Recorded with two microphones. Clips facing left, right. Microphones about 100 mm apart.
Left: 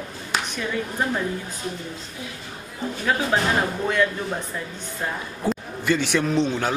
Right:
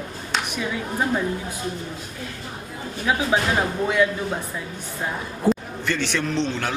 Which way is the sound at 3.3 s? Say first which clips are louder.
Right 1 dB; 10° right (ahead or behind).